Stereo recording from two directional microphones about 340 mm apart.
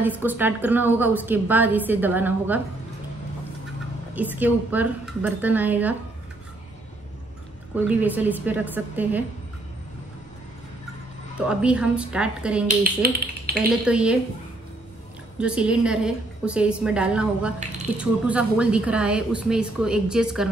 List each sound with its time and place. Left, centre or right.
0.0 s a woman's voice: centre
4.4 s a woman's voice: centre
7.7 s a woman's voice: centre
11.3 s a woman's voice: centre
12.6 s speech: right
13.8 s a woman's voice: centre
15.3 s a woman's voice: centre